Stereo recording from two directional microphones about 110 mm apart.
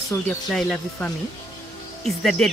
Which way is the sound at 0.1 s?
30° left (ahead or behind).